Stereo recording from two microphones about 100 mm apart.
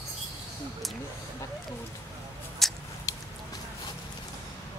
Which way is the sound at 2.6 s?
Centre (ahead or behind).